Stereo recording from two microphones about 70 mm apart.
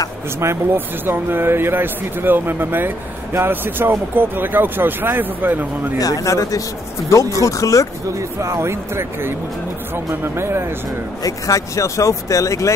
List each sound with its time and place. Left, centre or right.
0.7 s speech: right
5.9 s speech: left
8.4 s speech: right
11.2 s speech: left